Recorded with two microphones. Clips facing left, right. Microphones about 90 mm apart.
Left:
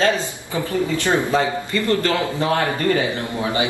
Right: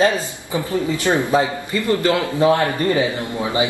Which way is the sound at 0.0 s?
15° right (ahead or behind).